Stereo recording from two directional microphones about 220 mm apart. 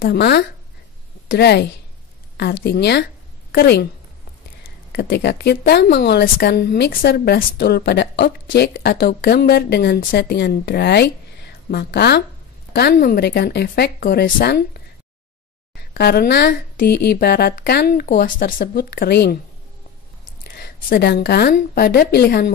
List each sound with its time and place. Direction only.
0.0 s a woman's voice: 45° left (ahead or behind)
4.9 s a woman's voice: 45° left (ahead or behind)
15.9 s a woman's voice: 45° left (ahead or behind)
20.5 s a woman's voice: 45° left (ahead or behind)